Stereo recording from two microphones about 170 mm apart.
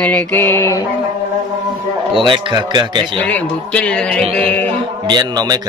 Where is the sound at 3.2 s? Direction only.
10° left (ahead or behind).